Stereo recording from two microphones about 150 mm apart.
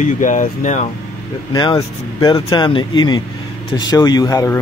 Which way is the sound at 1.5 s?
30° left (ahead or behind).